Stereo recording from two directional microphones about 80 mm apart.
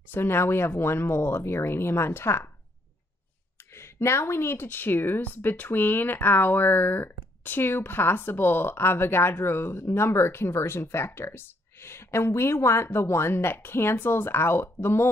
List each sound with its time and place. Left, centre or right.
0.1 s speech: left
3.5 s speech: left